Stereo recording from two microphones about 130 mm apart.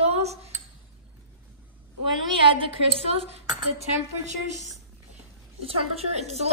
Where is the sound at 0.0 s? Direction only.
55° right (ahead or behind).